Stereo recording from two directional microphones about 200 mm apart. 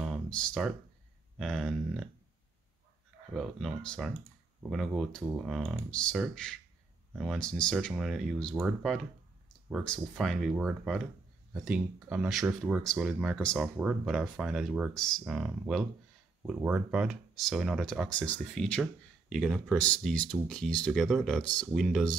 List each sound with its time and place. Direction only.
0.0 s a sound: centre (ahead or behind)
1.4 s speech: centre (ahead or behind)
3.3 s speech: centre (ahead or behind)